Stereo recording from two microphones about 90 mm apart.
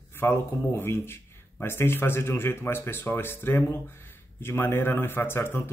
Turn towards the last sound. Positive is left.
turn(degrees=25)  # may be behind; listen again after turning